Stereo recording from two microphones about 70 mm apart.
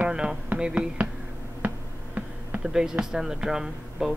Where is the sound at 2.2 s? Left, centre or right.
Right.